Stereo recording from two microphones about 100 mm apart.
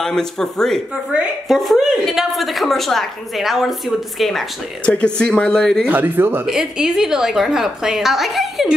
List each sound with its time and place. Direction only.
0.0 s a woman's voice: 5° left (ahead or behind)
5.9 s speech: 20° right (ahead or behind)
6.4 s a woman's voice: 5° right (ahead or behind)